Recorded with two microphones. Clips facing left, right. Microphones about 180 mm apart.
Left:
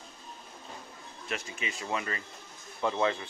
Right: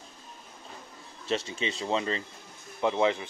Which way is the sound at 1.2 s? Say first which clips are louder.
Right 7 dB; 30° right (ahead or behind).